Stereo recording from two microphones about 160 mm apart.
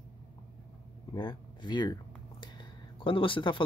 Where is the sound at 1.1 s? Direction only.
25° left (ahead or behind).